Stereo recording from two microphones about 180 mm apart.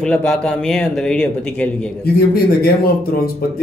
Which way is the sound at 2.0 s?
60° left (ahead or behind).